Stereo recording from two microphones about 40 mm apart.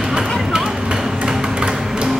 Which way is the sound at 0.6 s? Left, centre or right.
Centre.